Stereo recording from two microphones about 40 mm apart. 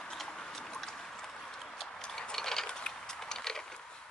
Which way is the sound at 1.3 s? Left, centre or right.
Centre.